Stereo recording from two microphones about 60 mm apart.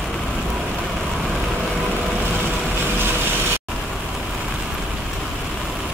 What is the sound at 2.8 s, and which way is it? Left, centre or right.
Vehicle, right.